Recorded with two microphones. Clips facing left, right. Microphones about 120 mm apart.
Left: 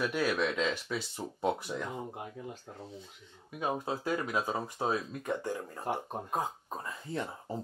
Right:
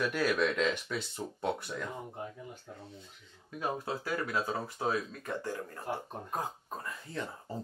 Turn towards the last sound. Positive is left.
turn(degrees=20)  # may be behind; listen again after turning